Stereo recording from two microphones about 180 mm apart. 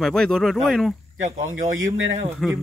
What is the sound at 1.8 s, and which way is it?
Speech, 90° right.